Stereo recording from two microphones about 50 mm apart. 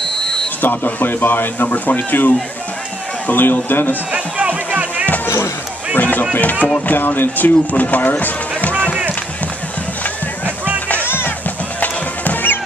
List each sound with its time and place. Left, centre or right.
0.6 s speech: left
3.9 s music: right
5.9 s speech: left
6.9 s speech: left
11.8 s music: left